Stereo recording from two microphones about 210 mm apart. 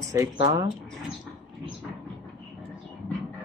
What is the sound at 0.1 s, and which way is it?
Speech, 15° right (ahead or behind).